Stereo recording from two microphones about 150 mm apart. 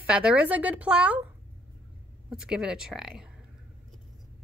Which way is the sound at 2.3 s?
5° right (ahead or behind).